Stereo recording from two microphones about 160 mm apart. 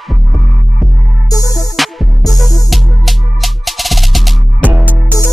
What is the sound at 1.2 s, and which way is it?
Music, 20° left (ahead or behind).